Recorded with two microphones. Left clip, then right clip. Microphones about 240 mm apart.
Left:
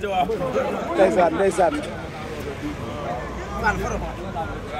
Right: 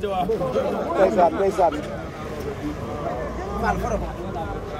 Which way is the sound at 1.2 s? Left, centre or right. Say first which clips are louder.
Even; left.